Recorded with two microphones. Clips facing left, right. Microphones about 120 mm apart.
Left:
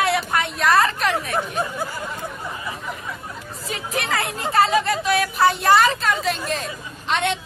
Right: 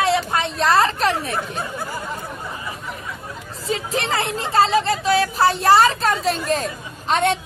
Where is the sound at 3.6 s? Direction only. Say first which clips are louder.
Right 4 dB; 30° right (ahead or behind).